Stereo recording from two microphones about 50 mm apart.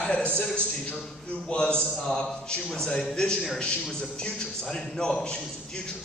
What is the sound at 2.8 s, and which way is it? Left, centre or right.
A man's voice, centre.